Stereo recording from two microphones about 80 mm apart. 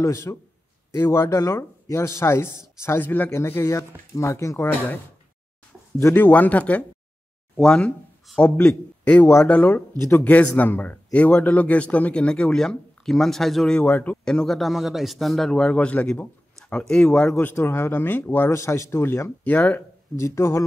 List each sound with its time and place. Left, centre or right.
0.0 s speech: left
6.1 s speech: left
17.4 s speech: left
18.5 s speech: left
19.4 s speech: centre
20.2 s speech: left